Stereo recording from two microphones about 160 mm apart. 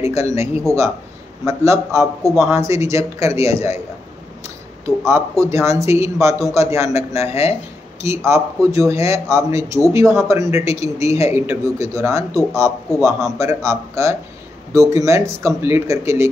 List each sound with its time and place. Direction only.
0.0 s a man's voice: 20° right (ahead or behind)
5.0 s a man's voice: 15° right (ahead or behind)